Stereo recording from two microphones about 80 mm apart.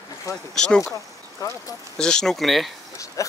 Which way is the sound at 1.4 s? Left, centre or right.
Left.